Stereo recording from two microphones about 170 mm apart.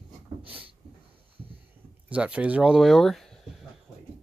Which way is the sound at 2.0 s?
5° right (ahead or behind).